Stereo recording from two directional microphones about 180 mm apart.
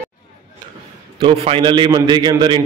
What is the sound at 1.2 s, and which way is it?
A man's voice, 30° right (ahead or behind).